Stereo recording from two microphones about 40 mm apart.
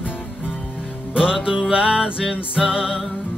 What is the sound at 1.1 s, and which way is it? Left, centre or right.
Music, centre.